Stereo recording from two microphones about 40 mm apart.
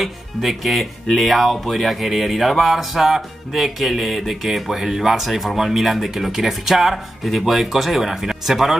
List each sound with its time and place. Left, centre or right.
0.0 s speech: centre